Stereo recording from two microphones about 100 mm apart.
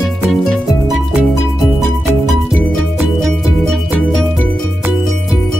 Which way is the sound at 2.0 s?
Centre (ahead or behind).